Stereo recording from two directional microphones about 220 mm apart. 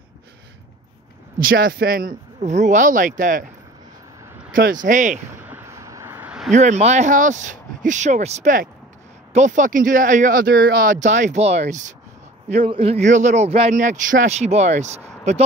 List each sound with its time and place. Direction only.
1.4 s speech: 40° right (ahead or behind)
4.5 s speech: 40° right (ahead or behind)
5.4 s a sound: 10° right (ahead or behind)
6.5 s speech: 30° right (ahead or behind)